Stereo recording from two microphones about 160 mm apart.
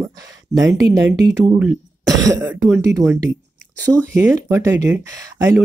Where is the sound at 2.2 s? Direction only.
15° right (ahead or behind).